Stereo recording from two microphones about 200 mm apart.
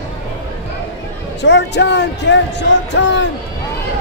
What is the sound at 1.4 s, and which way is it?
Speech, 60° left (ahead or behind).